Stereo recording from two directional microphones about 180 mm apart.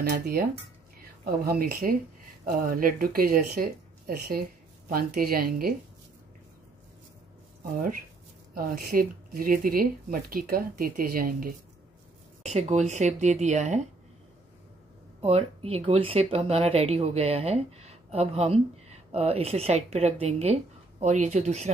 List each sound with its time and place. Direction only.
0.1 s speech: 55° right (ahead or behind)
7.6 s speech: 50° right (ahead or behind)
12.4 s speech: 40° right (ahead or behind)
15.2 s speech: 35° right (ahead or behind)